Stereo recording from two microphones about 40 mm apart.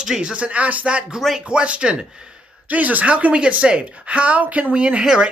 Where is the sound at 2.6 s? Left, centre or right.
Right.